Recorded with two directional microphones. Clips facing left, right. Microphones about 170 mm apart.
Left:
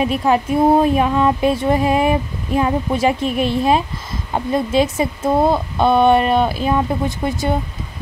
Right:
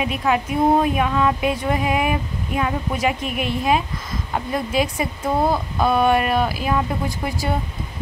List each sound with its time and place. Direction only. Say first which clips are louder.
0.0 s speech: left 5 dB; 35° left (ahead or behind)